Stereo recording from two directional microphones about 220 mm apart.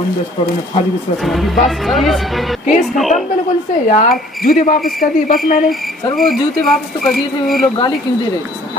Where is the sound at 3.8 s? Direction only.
35° left (ahead or behind).